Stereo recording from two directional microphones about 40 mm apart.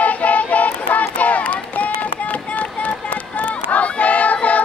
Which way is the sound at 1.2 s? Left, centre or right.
Left.